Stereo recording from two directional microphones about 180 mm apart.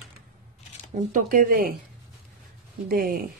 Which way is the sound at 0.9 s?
45° right (ahead or behind).